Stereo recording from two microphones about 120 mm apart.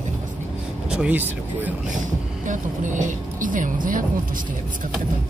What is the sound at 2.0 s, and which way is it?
Speech, 90° right.